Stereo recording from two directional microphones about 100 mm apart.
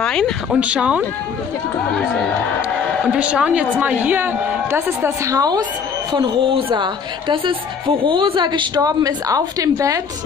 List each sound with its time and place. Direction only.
0.0 s speech: 5° left (ahead or behind)
0.6 s a woman's voice: 10° right (ahead or behind)
3.1 s a woman's voice: 15° right (ahead or behind); by 10.0 s 35° right (ahead or behind)